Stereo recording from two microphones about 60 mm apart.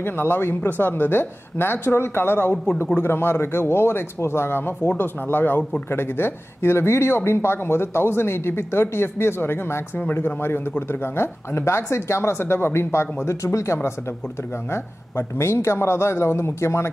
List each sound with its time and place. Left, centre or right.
0.0 s speech: left
13.4 s speech: left